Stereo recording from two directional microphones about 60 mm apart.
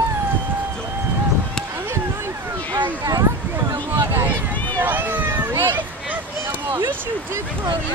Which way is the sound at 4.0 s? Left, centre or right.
Right.